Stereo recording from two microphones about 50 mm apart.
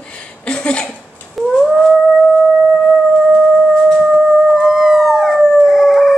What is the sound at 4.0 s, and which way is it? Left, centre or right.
Howl, centre.